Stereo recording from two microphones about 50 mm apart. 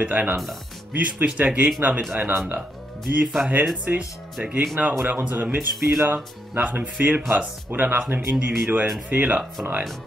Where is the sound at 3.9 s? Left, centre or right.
Right.